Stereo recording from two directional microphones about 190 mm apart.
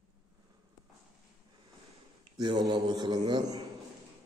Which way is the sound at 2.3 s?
20° right (ahead or behind).